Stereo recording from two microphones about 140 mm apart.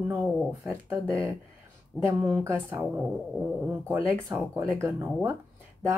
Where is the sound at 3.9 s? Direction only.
15° right (ahead or behind).